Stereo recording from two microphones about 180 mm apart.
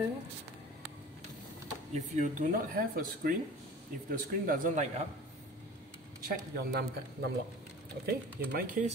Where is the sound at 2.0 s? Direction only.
45° right (ahead or behind).